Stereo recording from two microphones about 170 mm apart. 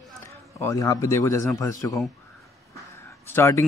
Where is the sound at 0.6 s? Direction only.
20° left (ahead or behind).